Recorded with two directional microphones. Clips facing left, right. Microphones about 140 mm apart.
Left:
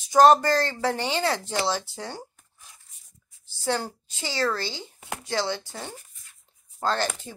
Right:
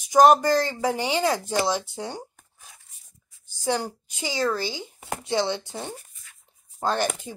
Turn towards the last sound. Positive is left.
turn(degrees=-15)  # may be behind; listen again after turning